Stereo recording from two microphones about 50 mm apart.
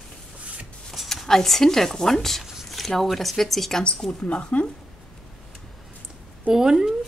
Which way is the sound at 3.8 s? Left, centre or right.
Left.